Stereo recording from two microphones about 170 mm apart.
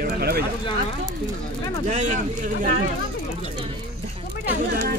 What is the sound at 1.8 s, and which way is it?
Speech, 45° right (ahead or behind).